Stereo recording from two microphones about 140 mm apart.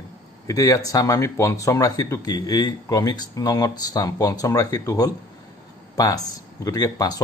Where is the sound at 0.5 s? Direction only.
25° left (ahead or behind).